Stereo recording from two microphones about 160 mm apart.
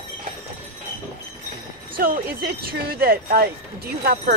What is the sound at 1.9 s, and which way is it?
Speech, 65° right (ahead or behind).